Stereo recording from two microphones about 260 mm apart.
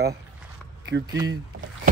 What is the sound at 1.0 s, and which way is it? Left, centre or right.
Speech, centre.